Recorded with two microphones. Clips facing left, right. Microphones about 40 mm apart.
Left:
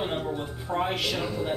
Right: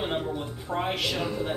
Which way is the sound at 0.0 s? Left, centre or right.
Centre.